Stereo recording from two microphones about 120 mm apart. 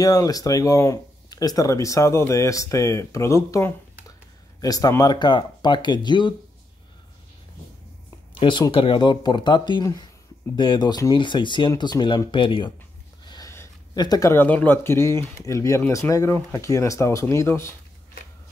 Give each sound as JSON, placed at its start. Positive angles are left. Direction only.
{"t": 0.0, "sound": "speech", "side_deg": 30}
{"t": 8.4, "sound": "speech", "side_deg": 45}
{"t": 13.2, "sound": "a sound", "side_deg": 35}
{"t": 13.9, "sound": "speech", "side_deg": 35}
{"t": 14.3, "sound": "speech", "side_deg": 15}